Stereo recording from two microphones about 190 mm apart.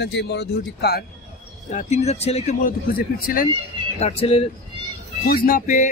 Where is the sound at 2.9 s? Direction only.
50° left (ahead or behind).